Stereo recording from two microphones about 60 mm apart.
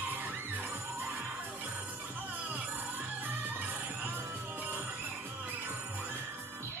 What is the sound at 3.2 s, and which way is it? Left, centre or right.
Music, right.